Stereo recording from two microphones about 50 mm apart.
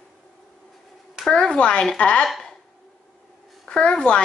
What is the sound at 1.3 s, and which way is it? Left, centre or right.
Speech, centre.